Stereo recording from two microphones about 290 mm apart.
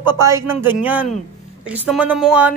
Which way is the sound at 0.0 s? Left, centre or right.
Centre.